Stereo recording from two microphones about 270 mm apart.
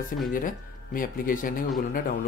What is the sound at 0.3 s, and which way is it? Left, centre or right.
Speech, left.